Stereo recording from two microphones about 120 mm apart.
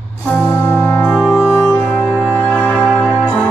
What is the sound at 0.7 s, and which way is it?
Music, 10° left (ahead or behind).